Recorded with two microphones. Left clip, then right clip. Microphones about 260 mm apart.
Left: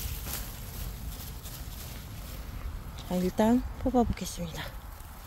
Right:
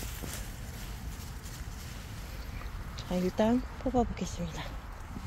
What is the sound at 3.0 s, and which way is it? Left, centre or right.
Speech, centre.